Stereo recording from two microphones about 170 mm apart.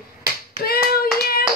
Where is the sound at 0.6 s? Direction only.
60° left (ahead or behind).